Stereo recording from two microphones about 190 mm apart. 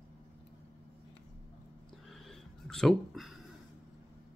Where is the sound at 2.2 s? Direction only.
Centre (ahead or behind).